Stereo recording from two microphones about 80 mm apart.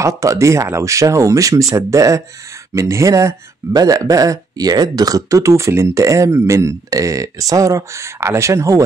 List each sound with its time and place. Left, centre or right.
0.0 s speech: right